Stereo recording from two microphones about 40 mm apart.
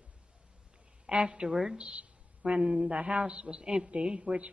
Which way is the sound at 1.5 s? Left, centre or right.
Centre.